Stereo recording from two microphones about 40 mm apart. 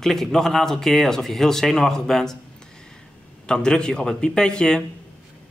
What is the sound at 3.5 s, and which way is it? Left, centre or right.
Speech, centre.